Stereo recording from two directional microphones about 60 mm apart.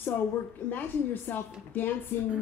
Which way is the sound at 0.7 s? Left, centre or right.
Left.